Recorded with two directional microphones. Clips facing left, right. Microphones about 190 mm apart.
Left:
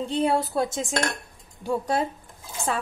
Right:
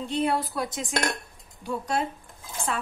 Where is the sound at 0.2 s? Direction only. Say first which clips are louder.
Left 4 dB; 25° left (ahead or behind).